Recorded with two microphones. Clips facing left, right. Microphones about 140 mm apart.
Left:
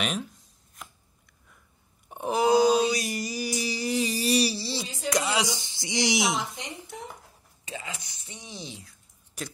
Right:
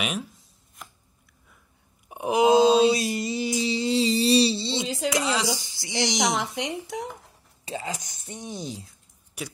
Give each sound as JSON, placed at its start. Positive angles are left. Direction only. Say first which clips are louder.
{"t": 0.0, "sound": "shuffling cards", "louder": "even", "side_deg": -5}
{"t": 2.0, "sound": "a sound", "louder": "right 4 dB", "side_deg": -15}
{"t": 4.8, "sound": "a sound", "louder": "right 5 dB", "side_deg": -90}
{"t": 5.1, "sound": "speech", "louder": "left 1 dB", "side_deg": 0}
{"t": 5.6, "sound": "speech", "louder": "right 1 dB", "side_deg": 25}
{"t": 6.4, "sound": "speech", "louder": "right 7 dB", "side_deg": -80}
{"t": 7.6, "sound": "speech", "louder": "right 6 dB", "side_deg": -35}